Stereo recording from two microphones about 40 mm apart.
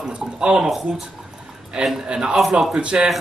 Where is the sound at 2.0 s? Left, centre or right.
Right.